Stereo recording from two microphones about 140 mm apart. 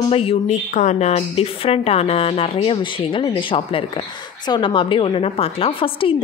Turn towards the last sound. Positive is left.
turn(degrees=40)  # may be behind; listen again after turning